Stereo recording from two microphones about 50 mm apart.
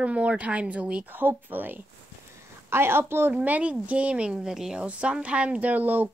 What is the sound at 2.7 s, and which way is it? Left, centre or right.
Speech, right.